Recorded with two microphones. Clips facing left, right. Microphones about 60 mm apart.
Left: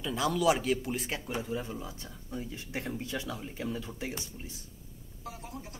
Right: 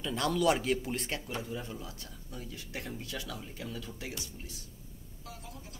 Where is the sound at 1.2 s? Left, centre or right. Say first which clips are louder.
Left 4 dB; centre.